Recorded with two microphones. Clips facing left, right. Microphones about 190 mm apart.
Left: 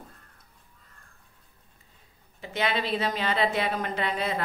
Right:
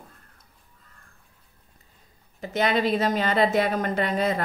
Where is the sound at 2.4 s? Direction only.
45° right (ahead or behind).